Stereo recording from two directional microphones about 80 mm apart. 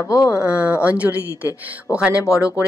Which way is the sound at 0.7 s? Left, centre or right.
Centre.